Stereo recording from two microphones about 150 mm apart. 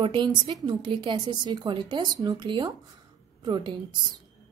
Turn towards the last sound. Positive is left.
turn(degrees=-30)  # may be behind; listen again after turning